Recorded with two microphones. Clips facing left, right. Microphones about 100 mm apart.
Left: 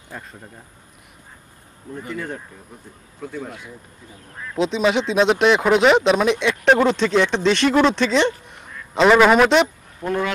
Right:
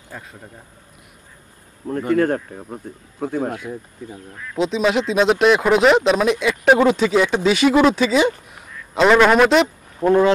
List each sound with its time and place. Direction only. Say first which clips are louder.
0.1 s speech: even; 5° right (ahead or behind)
1.9 s speech: right 12 dB; 65° right (ahead or behind)
4.6 s speech: right 1 dB; centre (ahead or behind)
9.9 s speech: right 9 dB; 30° right (ahead or behind)